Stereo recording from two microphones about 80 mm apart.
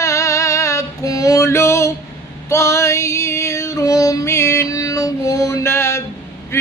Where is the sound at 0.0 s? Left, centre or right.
Left.